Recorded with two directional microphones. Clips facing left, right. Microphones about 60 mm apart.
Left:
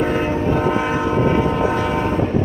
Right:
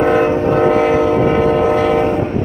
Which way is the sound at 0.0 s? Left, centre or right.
Right.